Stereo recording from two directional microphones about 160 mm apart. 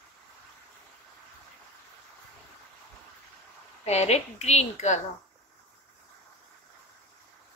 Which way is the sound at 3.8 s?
40° left (ahead or behind).